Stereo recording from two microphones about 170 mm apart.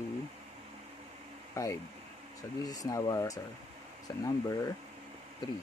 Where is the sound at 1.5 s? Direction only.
15° left (ahead or behind).